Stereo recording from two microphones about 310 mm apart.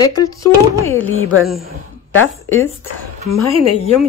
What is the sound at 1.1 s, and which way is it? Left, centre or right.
Speech, left.